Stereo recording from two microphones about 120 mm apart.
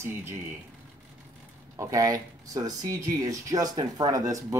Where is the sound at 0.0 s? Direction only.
20° right (ahead or behind).